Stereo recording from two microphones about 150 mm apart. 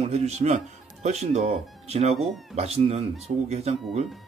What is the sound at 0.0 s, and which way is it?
Speech, 45° right (ahead or behind).